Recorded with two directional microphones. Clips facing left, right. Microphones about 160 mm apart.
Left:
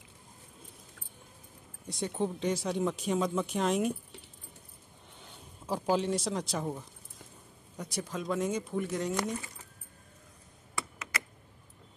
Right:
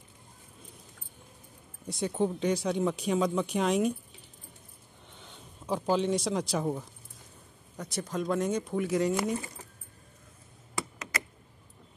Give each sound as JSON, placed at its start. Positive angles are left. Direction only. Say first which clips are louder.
{"t": 1.9, "sound": "speech", "louder": "right 3 dB", "side_deg": 0}
{"t": 5.2, "sound": "speech", "louder": "right 2 dB", "side_deg": 5}
{"t": 7.7, "sound": "speech", "louder": "right 3 dB", "side_deg": 10}
{"t": 11.0, "sound": "computer keyboard", "louder": "right 2 dB", "side_deg": -40}